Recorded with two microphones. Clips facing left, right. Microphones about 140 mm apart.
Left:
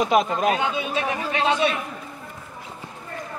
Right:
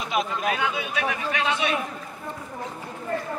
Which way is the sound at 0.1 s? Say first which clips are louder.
Left 6 dB; 45° left (ahead or behind).